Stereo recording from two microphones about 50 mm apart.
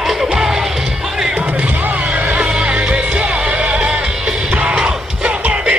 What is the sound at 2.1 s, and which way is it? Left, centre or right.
Music, right.